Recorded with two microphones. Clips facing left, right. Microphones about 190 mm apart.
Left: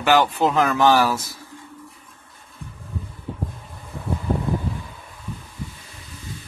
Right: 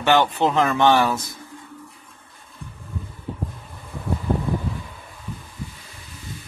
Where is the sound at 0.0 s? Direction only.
Centre (ahead or behind).